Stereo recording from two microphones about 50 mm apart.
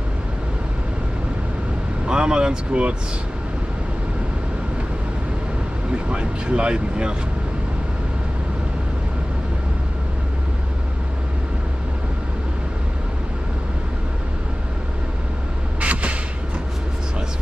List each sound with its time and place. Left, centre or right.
2.0 s speech: centre
6.0 s speech: right
15.8 s a sound: right